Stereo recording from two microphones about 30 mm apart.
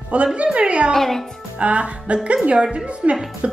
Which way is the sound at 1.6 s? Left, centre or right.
Right.